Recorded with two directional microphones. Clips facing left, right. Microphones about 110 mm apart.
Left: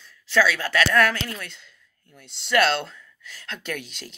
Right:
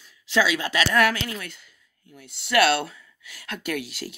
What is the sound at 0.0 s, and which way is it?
Speech, 15° right (ahead or behind).